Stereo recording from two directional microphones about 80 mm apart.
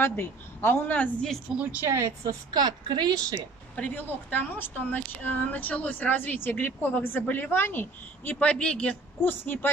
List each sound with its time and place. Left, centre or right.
0.0 s speech: left
1.6 s a woman's voice: centre
1.9 s a woman's voice: right
2.5 s a woman's voice: right
3.7 s speech: centre
9.2 s speech: left